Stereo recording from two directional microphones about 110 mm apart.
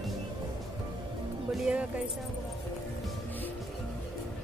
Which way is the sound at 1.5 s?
10° right (ahead or behind).